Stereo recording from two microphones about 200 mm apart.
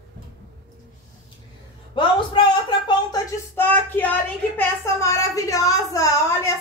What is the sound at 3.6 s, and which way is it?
A child's voice, 10° left (ahead or behind).